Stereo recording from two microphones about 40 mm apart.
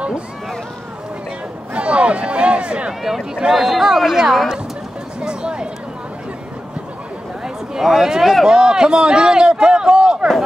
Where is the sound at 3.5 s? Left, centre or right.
Centre.